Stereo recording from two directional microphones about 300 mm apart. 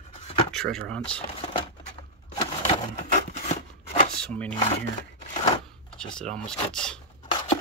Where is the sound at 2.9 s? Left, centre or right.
Left.